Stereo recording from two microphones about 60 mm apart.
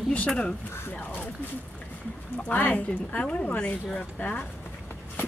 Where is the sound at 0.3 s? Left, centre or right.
Centre.